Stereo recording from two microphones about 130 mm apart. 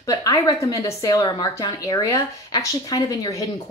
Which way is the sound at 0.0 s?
30° left (ahead or behind).